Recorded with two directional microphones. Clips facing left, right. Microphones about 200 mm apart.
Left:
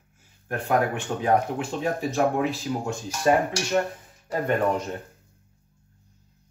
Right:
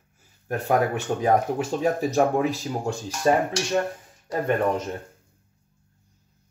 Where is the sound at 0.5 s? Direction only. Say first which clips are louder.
Right 1 dB; 40° right (ahead or behind).